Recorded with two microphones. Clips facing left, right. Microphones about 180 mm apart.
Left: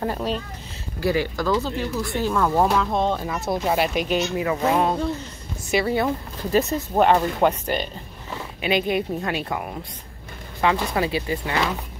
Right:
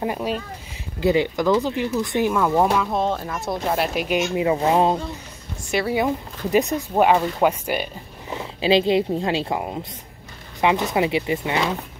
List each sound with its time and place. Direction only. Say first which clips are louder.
0.0 s speech: right 1 dB; 10° right (ahead or behind)
4.4 s a woman's voice: right 4 dB; 25° right (ahead or behind)
5.7 s speech: left 1 dB; centre (ahead or behind)
5.9 s speech: right 1 dB; 15° right (ahead or behind)
8.5 s a woman's voice: right 5 dB; 25° right (ahead or behind)